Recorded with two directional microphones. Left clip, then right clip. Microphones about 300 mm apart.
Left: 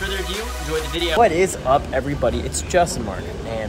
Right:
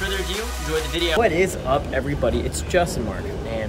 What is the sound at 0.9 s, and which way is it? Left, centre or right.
Speech, centre.